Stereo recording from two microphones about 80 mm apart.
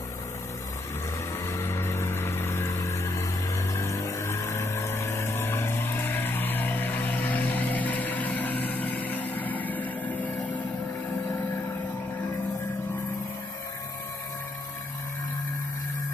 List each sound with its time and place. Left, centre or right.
1.4 s vehicle: left; by 10.5 s centre